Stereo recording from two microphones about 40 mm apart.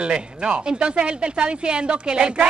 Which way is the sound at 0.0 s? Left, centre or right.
Right.